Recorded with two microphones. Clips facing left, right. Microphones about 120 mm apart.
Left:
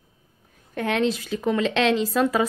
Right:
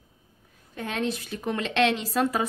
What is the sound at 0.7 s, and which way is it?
Speech, 80° left.